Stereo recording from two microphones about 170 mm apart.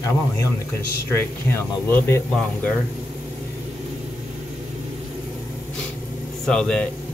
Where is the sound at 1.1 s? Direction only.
15° left (ahead or behind).